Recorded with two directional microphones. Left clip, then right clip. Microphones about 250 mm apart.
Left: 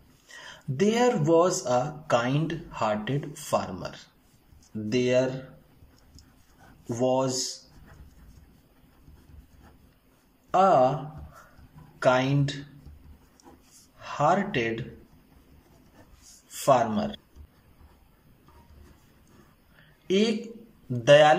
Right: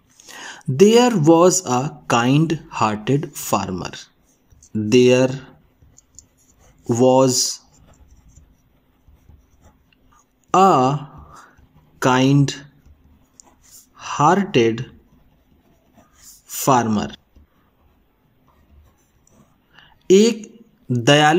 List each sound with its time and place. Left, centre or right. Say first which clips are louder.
0.3 s speech: right 10 dB; right
6.9 s speech: right 11 dB; right
10.5 s speech: right 6 dB; right
12.0 s speech: right 6 dB; right
13.9 s speech: right 8 dB; right
16.6 s speech: right 5 dB; right
20.1 s a woman's voice: right 11 dB; right